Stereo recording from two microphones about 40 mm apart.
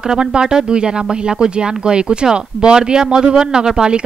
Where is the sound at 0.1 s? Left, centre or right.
Right.